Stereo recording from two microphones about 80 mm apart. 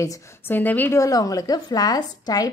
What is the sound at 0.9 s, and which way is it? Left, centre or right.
A woman's voice, left.